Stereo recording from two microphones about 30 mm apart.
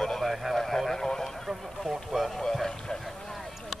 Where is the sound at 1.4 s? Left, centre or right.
Centre.